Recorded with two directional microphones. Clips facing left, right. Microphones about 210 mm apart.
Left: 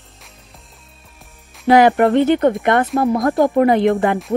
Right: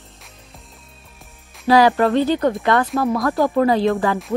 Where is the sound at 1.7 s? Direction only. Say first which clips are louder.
Left 3 dB; 20° left (ahead or behind).